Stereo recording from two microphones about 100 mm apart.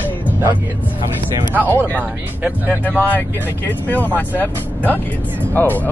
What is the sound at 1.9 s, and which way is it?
Speech, 15° right (ahead or behind).